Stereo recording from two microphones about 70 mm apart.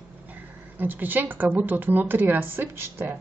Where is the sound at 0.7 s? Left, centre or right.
Right.